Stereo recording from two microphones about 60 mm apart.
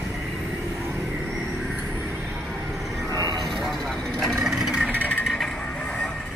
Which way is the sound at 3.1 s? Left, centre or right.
Right.